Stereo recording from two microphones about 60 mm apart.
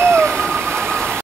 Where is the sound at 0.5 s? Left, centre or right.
Right.